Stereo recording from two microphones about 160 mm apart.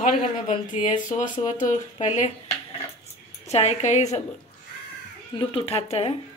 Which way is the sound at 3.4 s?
40° left (ahead or behind).